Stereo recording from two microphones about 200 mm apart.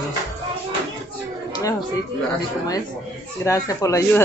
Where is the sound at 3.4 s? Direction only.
15° left (ahead or behind).